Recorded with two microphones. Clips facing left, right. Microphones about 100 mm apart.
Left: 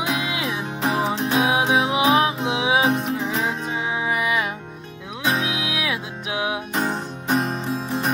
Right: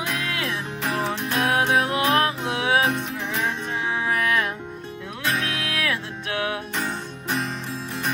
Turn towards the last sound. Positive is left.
turn(degrees=30)  # may be behind; listen again after turning